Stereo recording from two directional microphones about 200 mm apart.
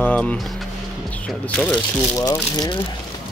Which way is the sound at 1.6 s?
5° left (ahead or behind).